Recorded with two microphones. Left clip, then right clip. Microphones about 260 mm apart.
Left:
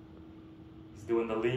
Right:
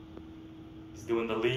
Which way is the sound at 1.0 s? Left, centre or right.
Centre.